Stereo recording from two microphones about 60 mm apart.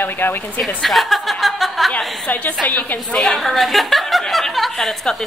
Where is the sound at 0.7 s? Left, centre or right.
Centre.